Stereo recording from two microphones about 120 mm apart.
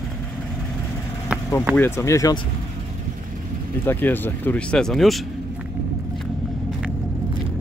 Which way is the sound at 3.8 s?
15° left (ahead or behind).